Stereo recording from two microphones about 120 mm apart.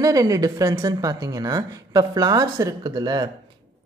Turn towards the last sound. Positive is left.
turn(degrees=-35)  # may be behind; listen again after turning